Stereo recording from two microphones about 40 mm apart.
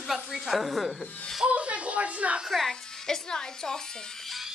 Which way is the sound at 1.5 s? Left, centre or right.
Right.